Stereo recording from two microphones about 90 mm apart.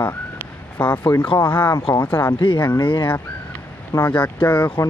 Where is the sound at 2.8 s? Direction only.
65° left (ahead or behind).